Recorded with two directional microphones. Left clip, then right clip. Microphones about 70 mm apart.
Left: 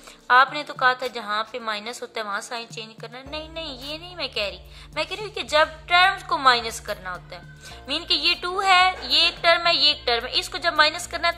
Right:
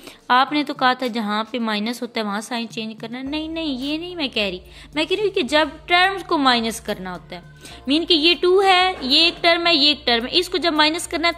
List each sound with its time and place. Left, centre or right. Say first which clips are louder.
0.3 s a woman's voice: even; right